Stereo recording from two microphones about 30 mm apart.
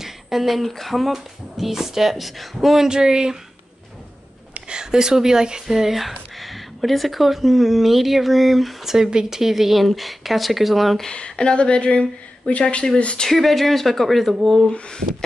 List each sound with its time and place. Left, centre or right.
0.0 s speech: centre
2.9 s speech: right
4.6 s speech: right
5.9 s speech: centre
8.8 s speech: centre
11.1 s speech: left
13.3 s speech: centre
14.7 s speech: left